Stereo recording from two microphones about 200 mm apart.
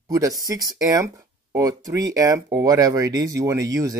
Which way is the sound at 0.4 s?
15° right (ahead or behind).